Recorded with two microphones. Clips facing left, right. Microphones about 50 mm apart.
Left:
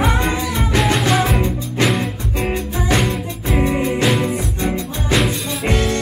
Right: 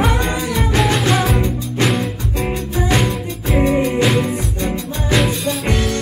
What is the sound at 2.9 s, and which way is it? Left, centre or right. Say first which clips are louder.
Music: left 1 dB; centre.